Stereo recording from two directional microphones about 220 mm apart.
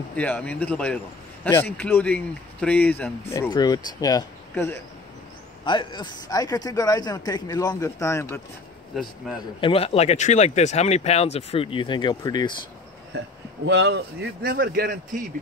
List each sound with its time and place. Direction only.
0.1 s speech: 5° left (ahead or behind)
9.6 s speech: 25° left (ahead or behind)
13.7 s a man's voice: 55° right (ahead or behind)